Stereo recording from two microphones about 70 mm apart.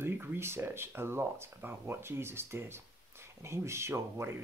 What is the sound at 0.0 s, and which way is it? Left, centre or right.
Speech, right.